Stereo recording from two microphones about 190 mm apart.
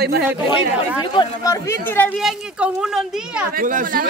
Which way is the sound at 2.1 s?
5° right (ahead or behind).